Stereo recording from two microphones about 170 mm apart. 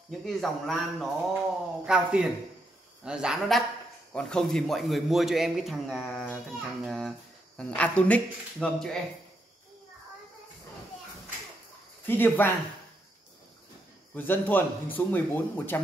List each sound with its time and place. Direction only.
0.2 s speech: centre (ahead or behind)
12.1 s speech: 10° left (ahead or behind)
14.1 s speech: 10° left (ahead or behind)